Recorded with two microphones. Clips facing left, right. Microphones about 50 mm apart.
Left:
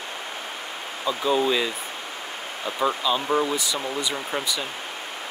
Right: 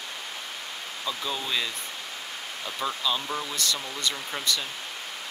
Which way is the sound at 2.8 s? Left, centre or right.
Centre.